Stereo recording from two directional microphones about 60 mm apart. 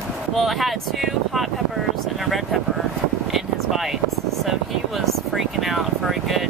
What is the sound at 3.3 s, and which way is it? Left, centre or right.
Vehicle, centre.